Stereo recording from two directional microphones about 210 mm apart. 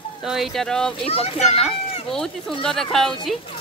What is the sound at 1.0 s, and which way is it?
Speech, 30° left (ahead or behind).